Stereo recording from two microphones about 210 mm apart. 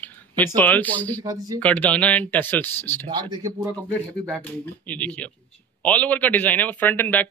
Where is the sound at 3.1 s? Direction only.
20° right (ahead or behind).